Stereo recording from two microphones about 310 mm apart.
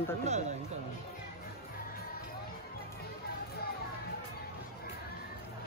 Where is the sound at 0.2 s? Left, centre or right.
Right.